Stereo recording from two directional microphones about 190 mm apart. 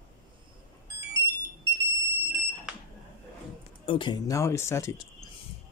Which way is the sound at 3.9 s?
25° left (ahead or behind).